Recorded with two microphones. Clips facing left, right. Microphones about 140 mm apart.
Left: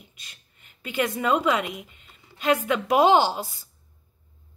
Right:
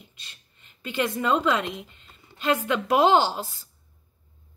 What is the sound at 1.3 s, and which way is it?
A woman's voice, 10° left (ahead or behind).